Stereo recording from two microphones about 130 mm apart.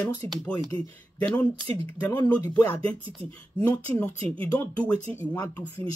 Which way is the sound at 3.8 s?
10° left (ahead or behind).